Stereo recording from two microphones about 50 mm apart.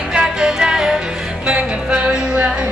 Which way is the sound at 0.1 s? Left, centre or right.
Centre.